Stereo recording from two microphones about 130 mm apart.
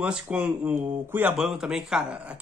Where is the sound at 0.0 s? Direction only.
10° right (ahead or behind).